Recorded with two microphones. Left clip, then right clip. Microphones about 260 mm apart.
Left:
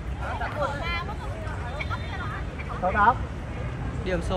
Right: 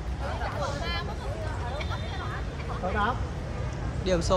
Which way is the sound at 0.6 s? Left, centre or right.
Centre.